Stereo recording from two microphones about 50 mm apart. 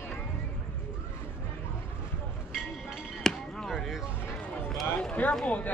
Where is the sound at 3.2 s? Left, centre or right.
Centre.